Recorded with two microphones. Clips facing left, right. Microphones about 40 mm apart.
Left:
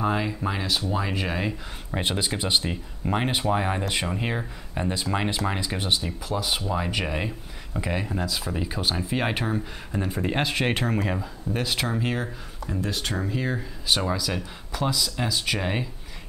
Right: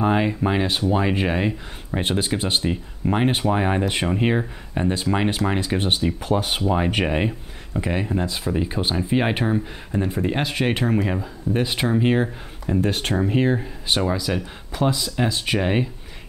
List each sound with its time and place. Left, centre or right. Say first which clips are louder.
0.0 s speech: right 5 dB; right
1.9 s speech: right 4 dB; centre
5.8 s speech: right 5 dB; right
7.8 s speech: right 4 dB; centre
11.5 s speech: right 5 dB; right
12.8 s speech: right 4 dB; right
14.0 s speech: right 4 dB; centre
14.8 s speech: right 5 dB; right